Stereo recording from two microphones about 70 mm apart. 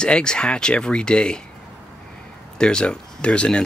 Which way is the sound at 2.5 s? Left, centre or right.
Centre.